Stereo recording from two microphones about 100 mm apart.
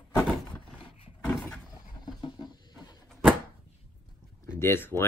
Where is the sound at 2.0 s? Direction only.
45° left (ahead or behind).